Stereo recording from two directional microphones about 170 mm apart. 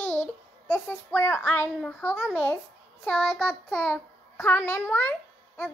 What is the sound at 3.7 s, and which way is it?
A child's voice, 5° left (ahead or behind).